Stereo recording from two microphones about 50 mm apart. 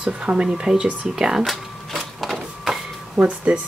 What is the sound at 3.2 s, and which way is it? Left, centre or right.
Speech, centre.